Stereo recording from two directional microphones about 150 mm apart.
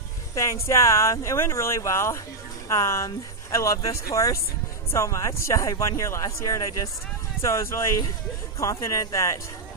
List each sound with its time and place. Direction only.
0.3 s speech: 20° left (ahead or behind)